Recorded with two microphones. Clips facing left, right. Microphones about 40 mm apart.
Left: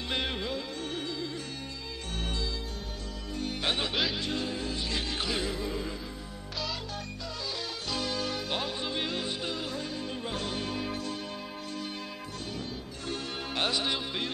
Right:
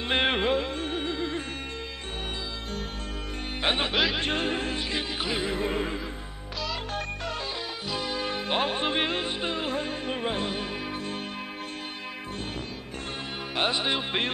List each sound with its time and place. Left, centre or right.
0.0 s music: right
3.6 s music: right
3.9 s speech: centre
4.2 s music: right
4.9 s music: right
5.5 s music: right
7.9 s music: centre
13.6 s music: right